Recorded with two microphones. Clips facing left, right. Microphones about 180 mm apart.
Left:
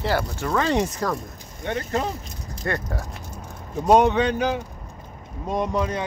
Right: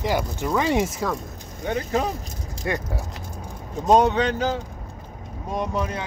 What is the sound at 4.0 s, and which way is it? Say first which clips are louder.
Speech: left 1 dB; 20° left (ahead or behind).